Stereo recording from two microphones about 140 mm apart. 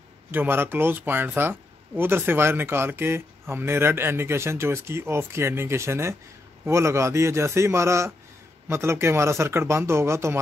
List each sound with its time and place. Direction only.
0.3 s speech: 15° right (ahead or behind)